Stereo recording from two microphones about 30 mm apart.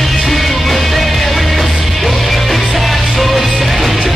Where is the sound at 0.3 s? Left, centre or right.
Centre.